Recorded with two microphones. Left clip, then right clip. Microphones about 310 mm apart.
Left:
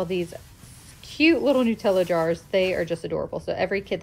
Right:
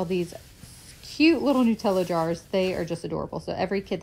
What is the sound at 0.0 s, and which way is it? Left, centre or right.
A woman's voice, centre.